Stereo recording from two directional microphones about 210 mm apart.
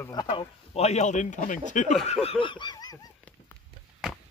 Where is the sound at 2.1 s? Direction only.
30° left (ahead or behind).